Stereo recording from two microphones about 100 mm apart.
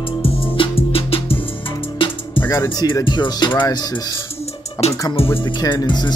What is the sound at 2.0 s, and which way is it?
Music, 60° left (ahead or behind).